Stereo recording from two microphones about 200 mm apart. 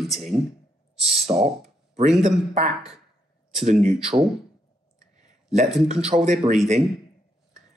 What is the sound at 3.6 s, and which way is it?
Speech, 35° right (ahead or behind).